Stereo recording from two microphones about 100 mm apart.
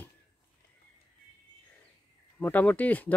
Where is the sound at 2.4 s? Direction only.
15° left (ahead or behind).